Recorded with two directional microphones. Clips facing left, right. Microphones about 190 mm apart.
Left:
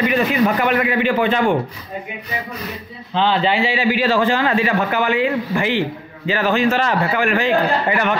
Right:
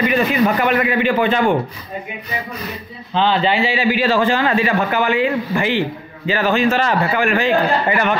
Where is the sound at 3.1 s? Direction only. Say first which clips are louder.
Right 1 dB; 25° right (ahead or behind).